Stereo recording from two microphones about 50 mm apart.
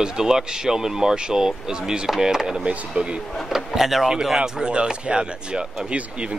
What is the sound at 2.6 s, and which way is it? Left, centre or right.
Speech, right.